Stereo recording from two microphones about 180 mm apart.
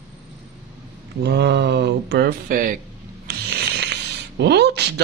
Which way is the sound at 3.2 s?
70° right (ahead or behind).